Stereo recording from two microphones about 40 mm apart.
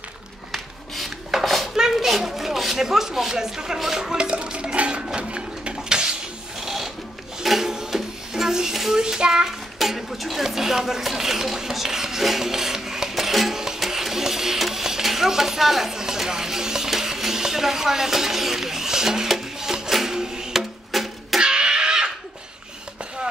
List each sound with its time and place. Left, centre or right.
0.5 s dishes: centre
1.8 s speech: centre
6.6 s sewing machine: centre
7.4 s a sound: centre
8.9 s child singing: centre
9.8 s speech: centre
13.7 s a sound: centre
20.9 s music: centre
21.4 s a sound: right